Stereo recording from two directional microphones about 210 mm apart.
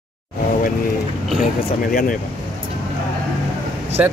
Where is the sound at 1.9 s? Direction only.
45° left (ahead or behind).